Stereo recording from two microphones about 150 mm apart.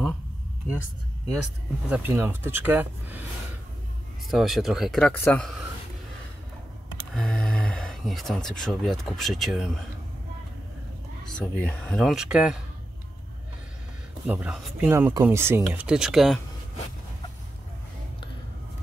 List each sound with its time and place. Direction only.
1.9 s speech: 15° right (ahead or behind)
4.3 s speech: centre (ahead or behind)
7.2 s speech: 5° left (ahead or behind)
11.2 s speech: 5° left (ahead or behind)
14.2 s speech: 10° right (ahead or behind)
14.9 s speech: 15° right (ahead or behind)